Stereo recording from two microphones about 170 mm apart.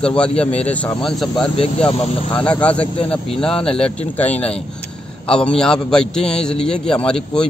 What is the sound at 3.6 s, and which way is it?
Speech, 35° left (ahead or behind).